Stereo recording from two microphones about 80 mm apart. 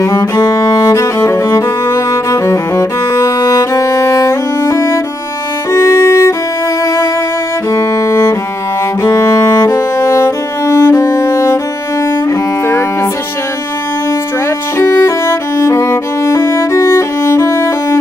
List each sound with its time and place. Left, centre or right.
0.0 s music: left
7.7 s music: left
14.8 s music: left